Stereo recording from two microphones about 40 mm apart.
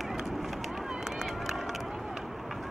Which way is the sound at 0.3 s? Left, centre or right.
Centre.